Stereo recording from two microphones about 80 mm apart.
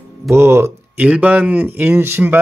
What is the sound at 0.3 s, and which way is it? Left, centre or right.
Speech, right.